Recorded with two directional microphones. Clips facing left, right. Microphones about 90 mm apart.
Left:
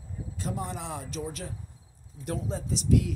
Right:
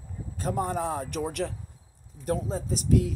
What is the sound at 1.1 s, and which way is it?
Speech, 60° right (ahead or behind).